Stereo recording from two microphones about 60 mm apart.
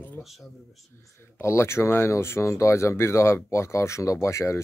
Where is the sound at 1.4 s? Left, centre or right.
Left.